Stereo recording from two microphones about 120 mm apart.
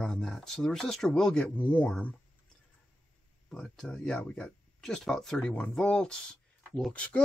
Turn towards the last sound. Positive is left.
turn(degrees=5)  # may be behind; listen again after turning